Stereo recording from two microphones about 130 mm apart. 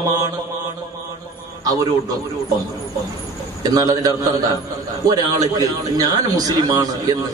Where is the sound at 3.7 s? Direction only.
30° right (ahead or behind).